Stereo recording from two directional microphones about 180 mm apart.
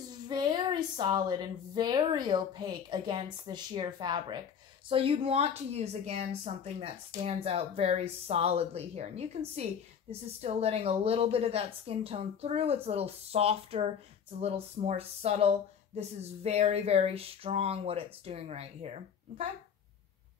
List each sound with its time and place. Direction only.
0.3 s a woman's voice: 25° right (ahead or behind)